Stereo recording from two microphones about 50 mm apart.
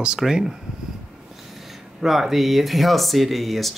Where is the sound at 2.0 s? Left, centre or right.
Centre.